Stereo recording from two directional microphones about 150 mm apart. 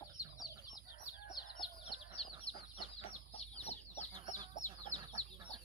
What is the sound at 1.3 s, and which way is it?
Chicken, 35° left (ahead or behind).